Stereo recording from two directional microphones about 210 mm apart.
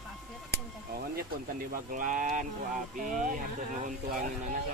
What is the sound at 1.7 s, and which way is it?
Speech, 40° right (ahead or behind).